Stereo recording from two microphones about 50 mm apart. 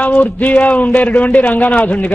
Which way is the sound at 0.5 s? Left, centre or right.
Centre.